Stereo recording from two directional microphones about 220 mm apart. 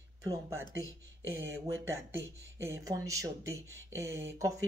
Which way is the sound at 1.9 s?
10° right (ahead or behind).